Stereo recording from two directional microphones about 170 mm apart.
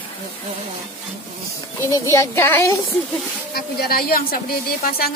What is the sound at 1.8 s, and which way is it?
Speech, 15° left (ahead or behind).